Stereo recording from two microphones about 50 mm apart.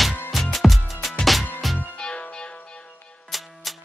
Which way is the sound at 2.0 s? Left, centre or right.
Centre.